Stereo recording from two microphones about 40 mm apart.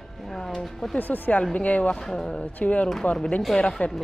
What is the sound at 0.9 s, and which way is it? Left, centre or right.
Speech, left.